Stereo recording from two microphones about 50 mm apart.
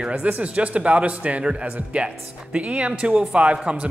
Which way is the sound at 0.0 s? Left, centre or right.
Right.